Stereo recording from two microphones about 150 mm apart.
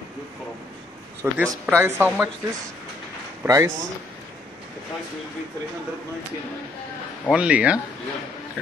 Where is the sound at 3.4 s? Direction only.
20° right (ahead or behind).